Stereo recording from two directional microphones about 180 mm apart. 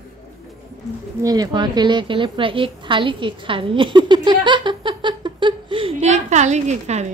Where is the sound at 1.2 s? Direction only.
20° right (ahead or behind).